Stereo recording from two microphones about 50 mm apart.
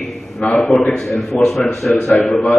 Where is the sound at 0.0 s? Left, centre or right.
Centre.